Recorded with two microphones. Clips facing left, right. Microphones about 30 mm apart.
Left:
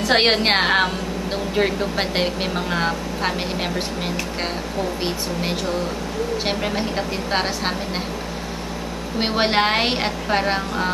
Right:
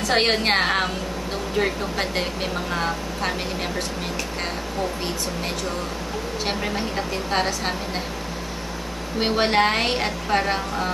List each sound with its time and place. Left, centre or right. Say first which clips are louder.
0.0 s speech: left 3 dB; left
6.4 s speech: left 3 dB; centre
9.2 s speech: even; centre